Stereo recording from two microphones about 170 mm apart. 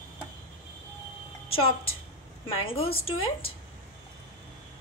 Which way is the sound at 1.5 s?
35° left (ahead or behind).